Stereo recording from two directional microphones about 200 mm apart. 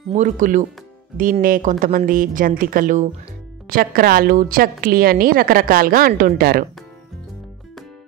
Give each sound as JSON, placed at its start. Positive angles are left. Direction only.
{"t": 0.1, "sound": "a woman's voice", "side_deg": -40}